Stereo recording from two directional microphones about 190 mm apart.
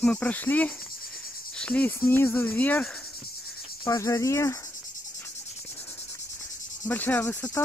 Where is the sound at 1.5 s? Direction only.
5° left (ahead or behind).